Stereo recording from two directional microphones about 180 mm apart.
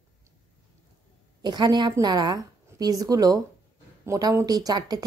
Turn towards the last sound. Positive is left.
turn(degrees=-20)  # may be behind; listen again after turning